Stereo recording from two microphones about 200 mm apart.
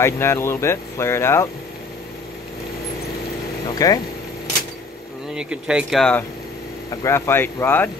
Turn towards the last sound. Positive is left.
turn(degrees=10)  # may be behind; listen again after turning